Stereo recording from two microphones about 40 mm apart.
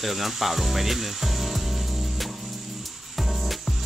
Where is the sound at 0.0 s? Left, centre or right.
Centre.